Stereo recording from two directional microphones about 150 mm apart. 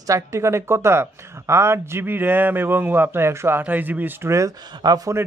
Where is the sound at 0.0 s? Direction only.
20° right (ahead or behind).